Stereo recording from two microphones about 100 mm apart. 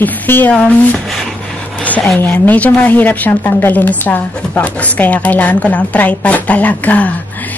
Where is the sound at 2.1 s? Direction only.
20° left (ahead or behind).